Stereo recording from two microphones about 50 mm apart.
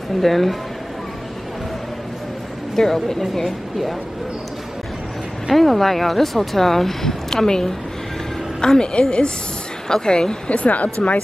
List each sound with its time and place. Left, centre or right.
0.2 s speech: centre
2.7 s speech: centre
5.5 s a woman's voice: centre; by 11.1 s left